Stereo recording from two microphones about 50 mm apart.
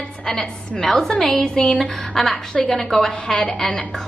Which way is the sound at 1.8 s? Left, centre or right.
Centre.